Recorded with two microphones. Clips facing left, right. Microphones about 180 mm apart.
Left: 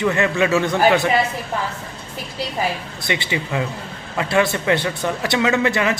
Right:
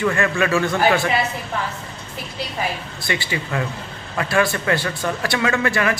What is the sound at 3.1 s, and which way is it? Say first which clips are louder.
A man's voice: left 1 dB; 20° left (ahead or behind).